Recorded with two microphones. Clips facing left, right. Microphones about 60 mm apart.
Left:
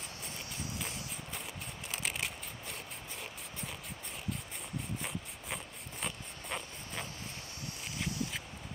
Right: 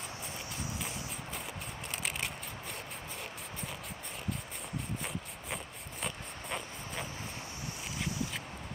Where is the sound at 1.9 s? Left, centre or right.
Centre.